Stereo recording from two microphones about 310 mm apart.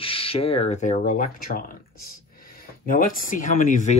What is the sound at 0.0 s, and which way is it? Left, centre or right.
Speech, centre.